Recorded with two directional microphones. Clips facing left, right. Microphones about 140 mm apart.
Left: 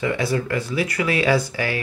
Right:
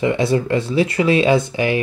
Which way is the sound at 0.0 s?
25° right (ahead or behind).